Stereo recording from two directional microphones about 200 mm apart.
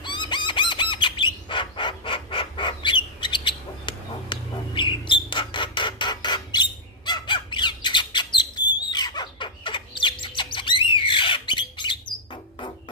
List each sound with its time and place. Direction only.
0.0 s bird: 25° left (ahead or behind)